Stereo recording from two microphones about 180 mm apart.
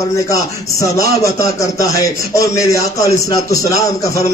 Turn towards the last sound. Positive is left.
turn(degrees=20)  # may be behind; listen again after turning